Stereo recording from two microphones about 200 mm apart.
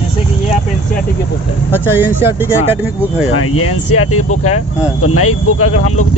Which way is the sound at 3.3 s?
90° left.